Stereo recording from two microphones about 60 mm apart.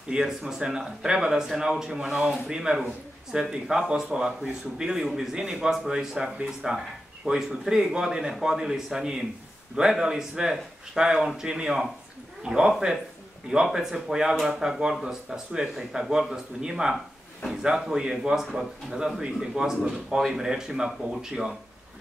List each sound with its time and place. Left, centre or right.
0.1 s a man's voice: centre